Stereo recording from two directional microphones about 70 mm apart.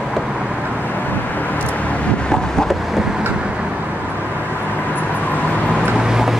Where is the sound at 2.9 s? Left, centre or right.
Centre.